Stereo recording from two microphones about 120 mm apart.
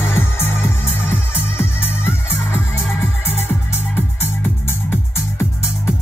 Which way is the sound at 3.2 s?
20° left (ahead or behind).